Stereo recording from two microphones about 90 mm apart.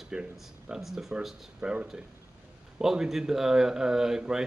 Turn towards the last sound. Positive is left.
turn(degrees=-5)  # may be behind; listen again after turning